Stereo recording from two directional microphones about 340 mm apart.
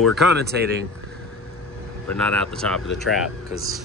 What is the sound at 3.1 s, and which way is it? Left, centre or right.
Speech, left.